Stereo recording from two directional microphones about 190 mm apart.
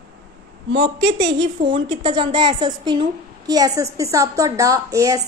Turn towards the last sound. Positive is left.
turn(degrees=-15)  # may be behind; listen again after turning